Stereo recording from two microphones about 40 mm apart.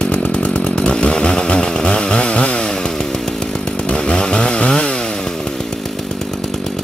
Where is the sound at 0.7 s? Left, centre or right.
Left.